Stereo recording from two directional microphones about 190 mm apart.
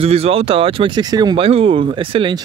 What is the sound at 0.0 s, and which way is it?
Speech, 30° right (ahead or behind).